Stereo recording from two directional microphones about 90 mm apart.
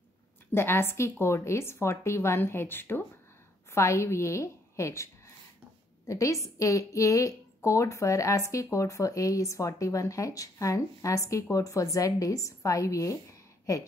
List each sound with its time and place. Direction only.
0.5 s a woman's voice: 25° left (ahead or behind)